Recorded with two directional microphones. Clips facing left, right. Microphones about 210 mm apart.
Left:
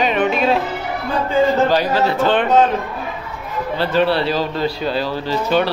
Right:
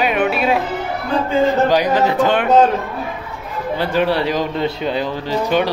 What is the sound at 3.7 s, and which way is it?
A man's voice, 15° right (ahead or behind).